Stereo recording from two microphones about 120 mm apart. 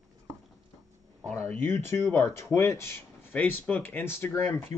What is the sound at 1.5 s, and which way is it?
Speech, 20° left (ahead or behind).